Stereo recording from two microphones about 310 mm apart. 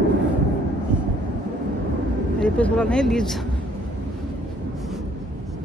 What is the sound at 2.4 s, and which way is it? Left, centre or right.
Speech, centre.